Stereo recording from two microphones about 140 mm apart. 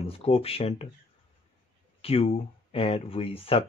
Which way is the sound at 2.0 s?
45° left (ahead or behind).